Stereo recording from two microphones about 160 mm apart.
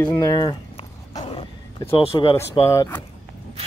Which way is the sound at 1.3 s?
35° left (ahead or behind).